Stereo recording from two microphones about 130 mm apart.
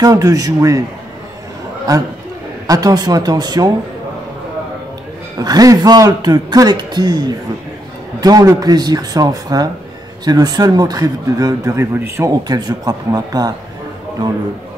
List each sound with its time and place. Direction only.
0.0 s a man's voice: 25° right (ahead or behind)
2.6 s a man's voice: 30° right (ahead or behind)
5.4 s a man's voice: 30° right (ahead or behind)